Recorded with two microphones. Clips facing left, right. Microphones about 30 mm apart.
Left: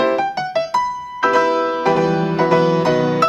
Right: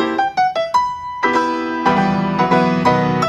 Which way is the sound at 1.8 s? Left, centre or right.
Right.